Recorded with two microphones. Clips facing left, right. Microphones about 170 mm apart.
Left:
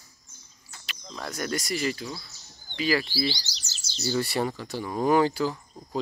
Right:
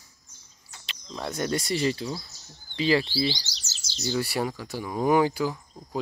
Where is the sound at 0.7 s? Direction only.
25° right (ahead or behind).